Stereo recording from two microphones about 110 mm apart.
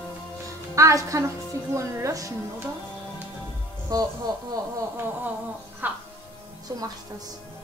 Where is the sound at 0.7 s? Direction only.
30° right (ahead or behind).